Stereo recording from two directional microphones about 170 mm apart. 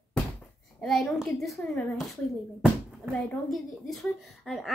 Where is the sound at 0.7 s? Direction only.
Centre (ahead or behind).